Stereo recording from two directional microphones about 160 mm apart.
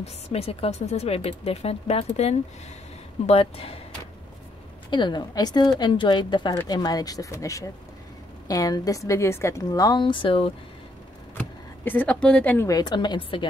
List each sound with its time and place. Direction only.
0.0 s speech: 40° left (ahead or behind)
4.9 s a woman's voice: 30° left (ahead or behind)
11.3 s speech: 10° left (ahead or behind); by 13.5 s 30° left (ahead or behind)